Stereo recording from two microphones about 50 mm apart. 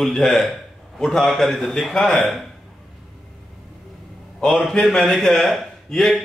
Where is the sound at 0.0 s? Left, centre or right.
Centre.